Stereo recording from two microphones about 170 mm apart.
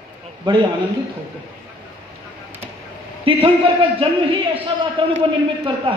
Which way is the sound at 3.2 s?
30° right (ahead or behind).